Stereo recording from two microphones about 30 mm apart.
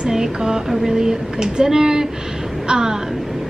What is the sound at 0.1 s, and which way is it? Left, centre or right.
Music, right.